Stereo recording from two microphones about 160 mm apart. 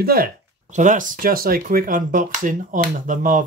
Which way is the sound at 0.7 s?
55° right (ahead or behind).